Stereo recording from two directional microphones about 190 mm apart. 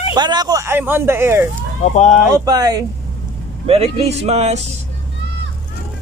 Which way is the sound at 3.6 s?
30° right (ahead or behind).